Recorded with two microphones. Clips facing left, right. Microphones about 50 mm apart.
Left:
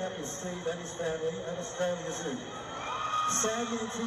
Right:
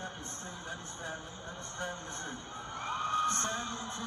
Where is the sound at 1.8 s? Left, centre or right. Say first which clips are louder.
Left 7 dB; left.